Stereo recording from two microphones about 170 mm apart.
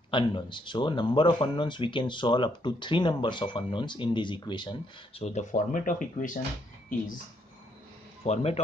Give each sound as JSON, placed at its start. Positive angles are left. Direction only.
{"t": 0.1, "sound": "speech", "side_deg": 30}
{"t": 8.2, "sound": "speech", "side_deg": 35}